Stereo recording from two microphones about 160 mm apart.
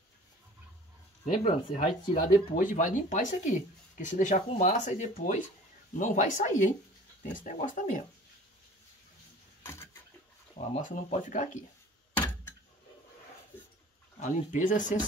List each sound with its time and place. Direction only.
1.2 s speech: 45° left (ahead or behind)
2.5 s speech: 55° left (ahead or behind)
10.7 s speech: 50° left (ahead or behind)
12.2 s a sound: 10° left (ahead or behind)
14.2 s speech: 50° left (ahead or behind)